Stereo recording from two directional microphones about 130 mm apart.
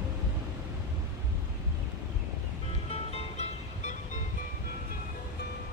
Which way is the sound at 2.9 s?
50° left (ahead or behind).